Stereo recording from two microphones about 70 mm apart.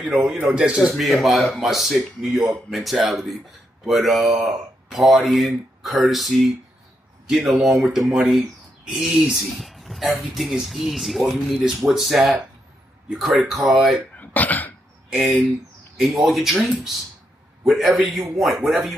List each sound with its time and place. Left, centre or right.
0.0 s speech: centre
0.9 s speech: centre
14.1 s throat clearing: left
15.0 s speech: centre